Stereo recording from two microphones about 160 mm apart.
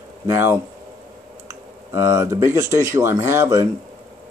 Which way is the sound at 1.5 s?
15° right (ahead or behind).